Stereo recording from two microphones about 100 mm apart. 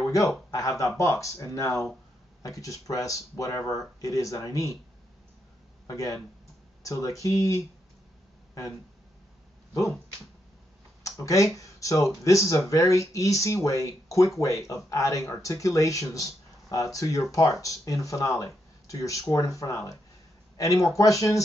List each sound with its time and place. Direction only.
0.0 s a sound: 35° left (ahead or behind)
0.5 s speech: 35° left (ahead or behind)
5.9 s speech: 35° left (ahead or behind)
11.1 s speech: 35° left (ahead or behind)